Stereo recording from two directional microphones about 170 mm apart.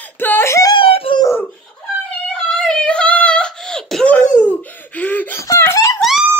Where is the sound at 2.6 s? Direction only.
5° left (ahead or behind).